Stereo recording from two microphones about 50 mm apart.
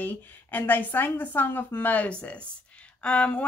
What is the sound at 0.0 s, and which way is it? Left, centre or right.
Speech, left.